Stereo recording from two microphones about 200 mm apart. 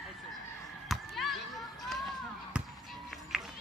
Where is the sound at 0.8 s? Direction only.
Centre (ahead or behind).